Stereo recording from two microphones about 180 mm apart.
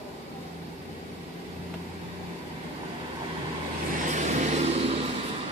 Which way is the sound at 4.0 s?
40° right (ahead or behind).